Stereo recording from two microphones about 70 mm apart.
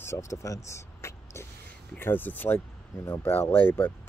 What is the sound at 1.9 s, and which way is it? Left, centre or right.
Speech, left.